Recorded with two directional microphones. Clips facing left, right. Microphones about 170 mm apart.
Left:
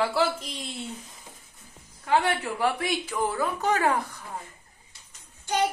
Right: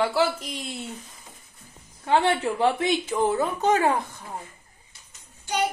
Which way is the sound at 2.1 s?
25° right (ahead or behind).